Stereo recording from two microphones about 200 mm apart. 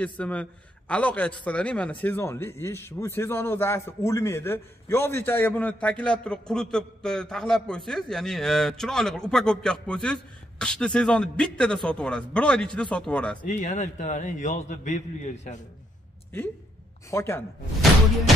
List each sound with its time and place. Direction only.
0.0 s a man's voice: 5° left (ahead or behind)
13.4 s a man's voice: 40° left (ahead or behind)
17.1 s a man's voice: 15° left (ahead or behind)